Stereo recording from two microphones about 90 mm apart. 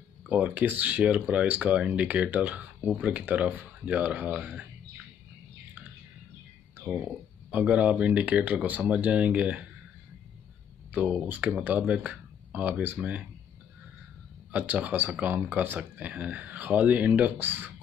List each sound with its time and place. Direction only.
0.3 s speech: 15° right (ahead or behind)
7.0 s speech: 15° right (ahead or behind)
10.9 s speech: 15° right (ahead or behind)
14.5 s speech: 20° right (ahead or behind)